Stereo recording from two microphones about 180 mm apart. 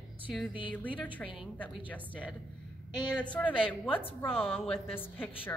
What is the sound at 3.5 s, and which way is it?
Speech, 30° left (ahead or behind).